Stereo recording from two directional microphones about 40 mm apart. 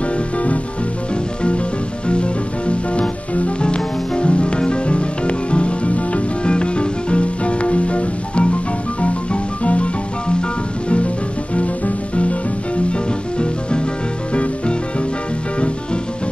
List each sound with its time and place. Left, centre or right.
2.0 s music: left
12.2 s music: left